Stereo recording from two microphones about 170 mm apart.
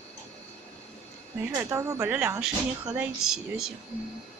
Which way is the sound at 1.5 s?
15° right (ahead or behind).